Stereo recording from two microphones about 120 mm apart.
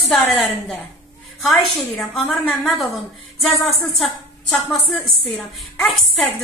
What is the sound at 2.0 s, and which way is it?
A woman's voice, centre (ahead or behind).